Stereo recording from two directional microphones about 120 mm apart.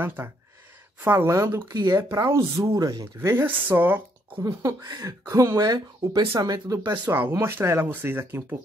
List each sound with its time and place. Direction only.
0.0 s speech: 20° right (ahead or behind)
3.2 s a woman's voice: 20° right (ahead or behind)
4.4 s speech: 30° right (ahead or behind)
7.1 s speech: 20° right (ahead or behind)